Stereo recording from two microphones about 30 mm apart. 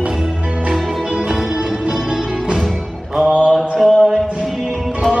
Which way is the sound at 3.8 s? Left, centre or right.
Centre.